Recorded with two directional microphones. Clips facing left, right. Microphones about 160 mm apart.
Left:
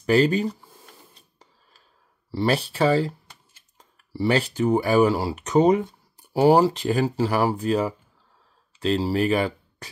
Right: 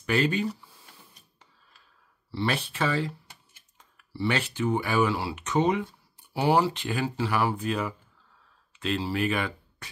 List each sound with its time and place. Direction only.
0.0 s speech: 35° left (ahead or behind)
2.3 s speech: 35° left (ahead or behind)